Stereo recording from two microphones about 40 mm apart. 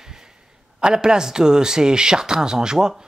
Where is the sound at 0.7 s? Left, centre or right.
Right.